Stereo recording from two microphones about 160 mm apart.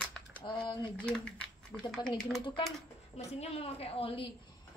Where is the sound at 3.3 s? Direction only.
40° left (ahead or behind).